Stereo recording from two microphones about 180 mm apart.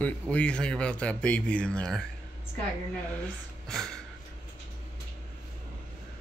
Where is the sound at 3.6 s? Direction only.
5° left (ahead or behind).